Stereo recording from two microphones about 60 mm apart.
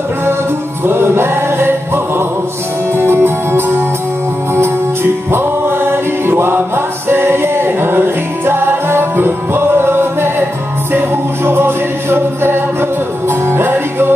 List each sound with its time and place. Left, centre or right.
0.8 s music: right
5.3 s music: right
7.1 s a capella: right
8.5 s music: right